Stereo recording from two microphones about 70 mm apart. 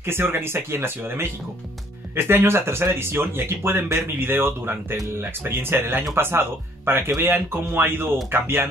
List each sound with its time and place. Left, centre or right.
0.0 s speech: right